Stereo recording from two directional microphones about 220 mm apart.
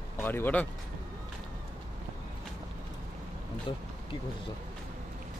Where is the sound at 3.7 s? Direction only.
20° left (ahead or behind).